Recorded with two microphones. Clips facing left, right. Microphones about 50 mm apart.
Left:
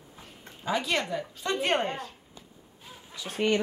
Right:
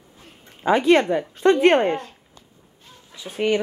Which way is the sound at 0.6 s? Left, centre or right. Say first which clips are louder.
Right 12 dB; right.